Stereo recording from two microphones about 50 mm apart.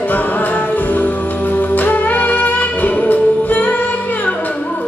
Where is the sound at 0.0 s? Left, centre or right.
Left.